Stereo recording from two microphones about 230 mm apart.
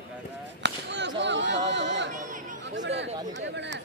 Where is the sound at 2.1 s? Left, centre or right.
Right.